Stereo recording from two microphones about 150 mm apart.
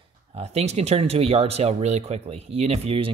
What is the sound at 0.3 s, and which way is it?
Speech, 45° right (ahead or behind).